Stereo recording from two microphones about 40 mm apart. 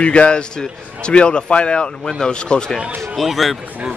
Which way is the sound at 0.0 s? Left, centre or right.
Left.